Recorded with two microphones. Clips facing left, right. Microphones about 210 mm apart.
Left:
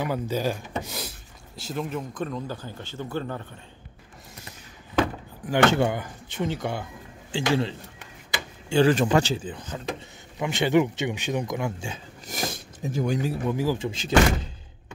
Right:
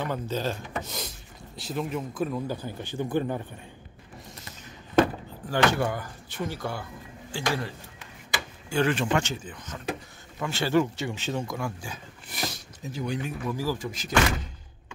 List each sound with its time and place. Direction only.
0.0 s speech: 10° left (ahead or behind)
0.8 s a sound: 5° left (ahead or behind)
1.6 s speech: centre (ahead or behind)
5.7 s speech: 25° left (ahead or behind)
10.4 s speech: 20° left (ahead or behind)
12.3 s speech: 50° left (ahead or behind); by 14.5 s 25° left (ahead or behind)